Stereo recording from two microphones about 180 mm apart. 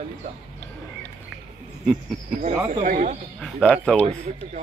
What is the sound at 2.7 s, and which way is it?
Speech, 45° right (ahead or behind).